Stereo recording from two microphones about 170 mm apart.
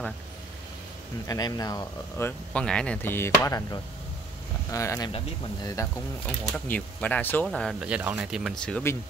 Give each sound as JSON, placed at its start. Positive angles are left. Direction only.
{"t": 1.2, "sound": "speech", "side_deg": 20}
{"t": 6.2, "sound": "speech", "side_deg": 5}